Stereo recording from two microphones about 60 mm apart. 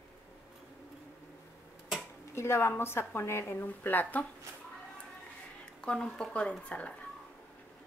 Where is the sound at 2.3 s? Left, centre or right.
Left.